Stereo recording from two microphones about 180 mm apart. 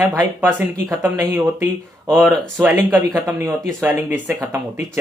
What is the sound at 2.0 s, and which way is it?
Speech, centre (ahead or behind).